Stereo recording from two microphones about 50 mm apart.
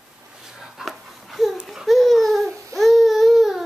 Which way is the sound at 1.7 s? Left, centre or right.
Centre.